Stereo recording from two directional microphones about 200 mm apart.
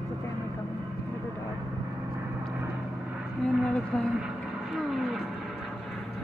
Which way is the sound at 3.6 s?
5° left (ahead or behind).